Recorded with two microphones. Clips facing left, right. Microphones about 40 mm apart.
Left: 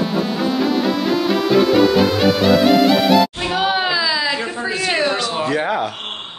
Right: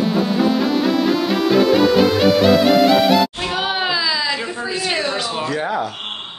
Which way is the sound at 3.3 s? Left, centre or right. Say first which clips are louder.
Left 3 dB; centre.